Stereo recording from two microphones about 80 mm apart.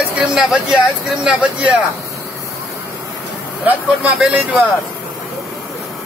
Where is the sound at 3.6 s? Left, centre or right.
Centre.